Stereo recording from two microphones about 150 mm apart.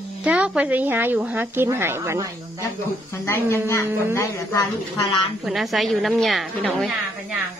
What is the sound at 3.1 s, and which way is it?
Speech, 15° left (ahead or behind).